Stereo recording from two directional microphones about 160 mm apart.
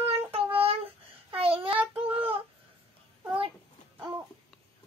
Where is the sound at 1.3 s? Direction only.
35° right (ahead or behind).